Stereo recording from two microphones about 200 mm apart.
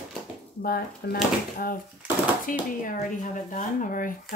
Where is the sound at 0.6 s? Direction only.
45° left (ahead or behind).